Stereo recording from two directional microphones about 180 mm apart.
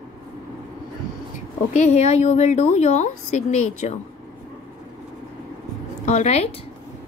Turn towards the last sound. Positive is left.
turn(degrees=35)  # may be behind; listen again after turning